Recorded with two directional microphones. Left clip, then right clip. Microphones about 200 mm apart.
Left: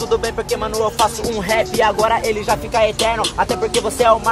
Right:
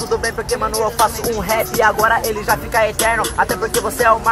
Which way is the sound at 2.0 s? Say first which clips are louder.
Right 1 dB; 15° left (ahead or behind).